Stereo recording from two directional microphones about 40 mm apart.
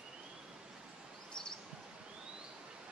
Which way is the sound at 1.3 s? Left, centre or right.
Centre.